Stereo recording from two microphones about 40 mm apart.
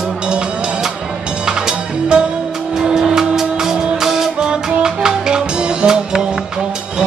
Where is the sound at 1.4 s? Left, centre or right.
Centre.